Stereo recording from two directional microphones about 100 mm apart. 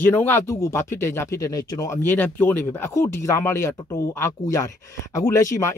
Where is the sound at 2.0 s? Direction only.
20° left (ahead or behind).